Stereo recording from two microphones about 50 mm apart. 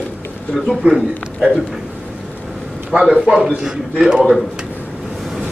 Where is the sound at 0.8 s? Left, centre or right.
Right.